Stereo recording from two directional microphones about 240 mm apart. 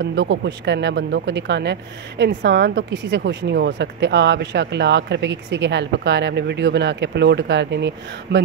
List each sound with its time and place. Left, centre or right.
0.0 s speech: right